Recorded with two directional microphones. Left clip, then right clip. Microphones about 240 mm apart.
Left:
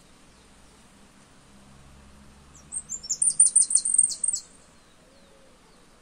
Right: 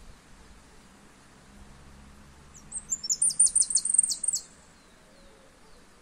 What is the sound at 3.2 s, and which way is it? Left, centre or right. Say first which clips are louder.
Bird: left 5 dB; centre.